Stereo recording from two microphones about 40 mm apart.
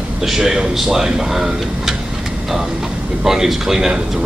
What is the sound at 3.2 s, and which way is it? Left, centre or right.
Speech, centre.